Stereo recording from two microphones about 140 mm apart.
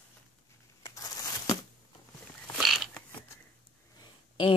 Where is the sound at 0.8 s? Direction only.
25° left (ahead or behind).